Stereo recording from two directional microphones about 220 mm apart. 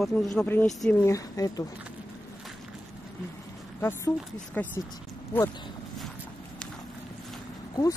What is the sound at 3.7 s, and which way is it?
Speech, 10° left (ahead or behind).